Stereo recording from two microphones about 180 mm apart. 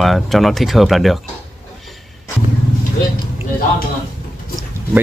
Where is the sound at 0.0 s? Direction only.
Centre (ahead or behind).